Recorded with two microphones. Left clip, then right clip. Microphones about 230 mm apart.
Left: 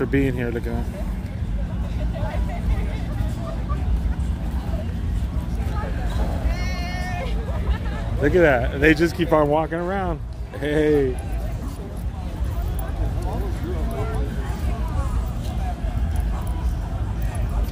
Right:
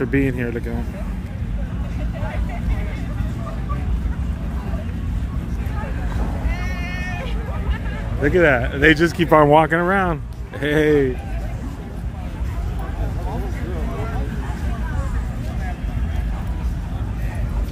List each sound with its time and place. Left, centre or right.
0.0 s speech: centre
7.0 s vehicle: centre
8.2 s speech: centre